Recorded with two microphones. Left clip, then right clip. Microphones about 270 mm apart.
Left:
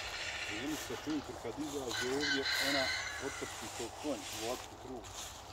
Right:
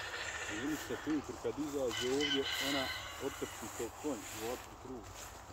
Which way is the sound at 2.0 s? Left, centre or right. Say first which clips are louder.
Left 2 dB; left.